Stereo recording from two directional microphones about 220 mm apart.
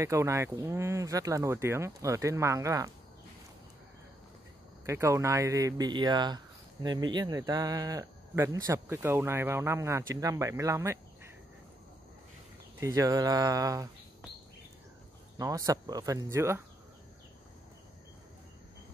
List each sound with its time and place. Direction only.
0.0 s speech: 15° right (ahead or behind)
4.8 s speech: 15° right (ahead or behind)
12.8 s speech: 15° right (ahead or behind)
15.3 s speech: 15° right (ahead or behind)